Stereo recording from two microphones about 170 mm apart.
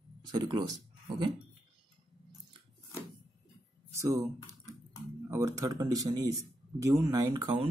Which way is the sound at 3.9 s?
15° right (ahead or behind).